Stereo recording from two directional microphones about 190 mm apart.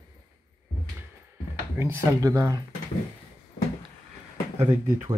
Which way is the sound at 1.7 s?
15° right (ahead or behind).